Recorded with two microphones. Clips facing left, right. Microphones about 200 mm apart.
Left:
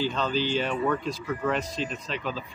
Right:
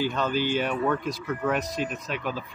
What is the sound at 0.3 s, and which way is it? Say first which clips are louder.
Speech: right 1 dB; 55° right (ahead or behind).